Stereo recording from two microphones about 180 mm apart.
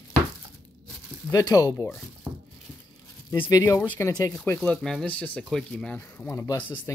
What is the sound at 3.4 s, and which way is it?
Speech, 20° left (ahead or behind).